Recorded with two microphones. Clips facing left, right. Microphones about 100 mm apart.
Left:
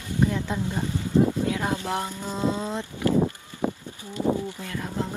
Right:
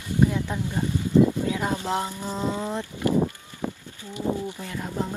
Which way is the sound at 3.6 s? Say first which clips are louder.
Left 4 dB; 80° left.